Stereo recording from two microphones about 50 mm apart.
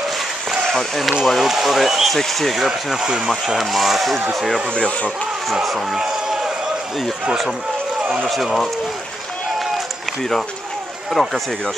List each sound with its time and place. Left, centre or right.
0.7 s speech: centre
4.7 s speech: left
5.5 s speech: centre
5.9 s a sound: centre
8.3 s speech: centre
11.2 s speech: centre